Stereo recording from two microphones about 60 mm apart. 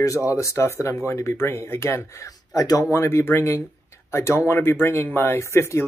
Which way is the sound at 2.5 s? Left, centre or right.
Left.